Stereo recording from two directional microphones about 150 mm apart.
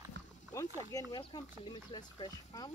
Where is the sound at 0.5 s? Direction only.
25° left (ahead or behind).